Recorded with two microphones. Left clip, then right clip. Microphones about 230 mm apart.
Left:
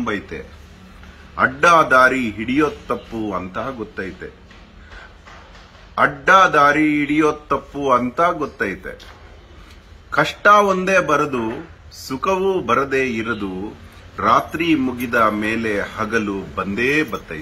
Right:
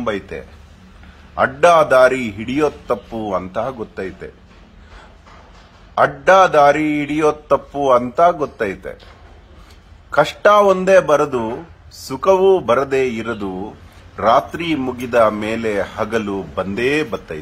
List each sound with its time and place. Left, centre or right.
0.0 s speech: right
5.9 s speech: right
10.1 s speech: right
14.1 s speech: right